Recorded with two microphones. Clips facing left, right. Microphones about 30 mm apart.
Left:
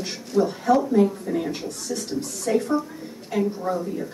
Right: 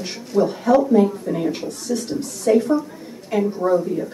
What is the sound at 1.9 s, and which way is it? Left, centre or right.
Speech, right.